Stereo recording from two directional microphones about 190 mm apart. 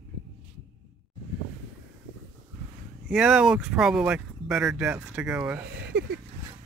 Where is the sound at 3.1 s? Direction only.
5° right (ahead or behind).